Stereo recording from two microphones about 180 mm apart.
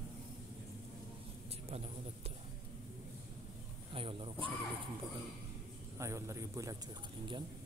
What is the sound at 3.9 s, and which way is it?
Speech, 30° right (ahead or behind).